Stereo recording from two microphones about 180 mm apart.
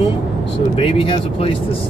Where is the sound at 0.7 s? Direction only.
30° left (ahead or behind).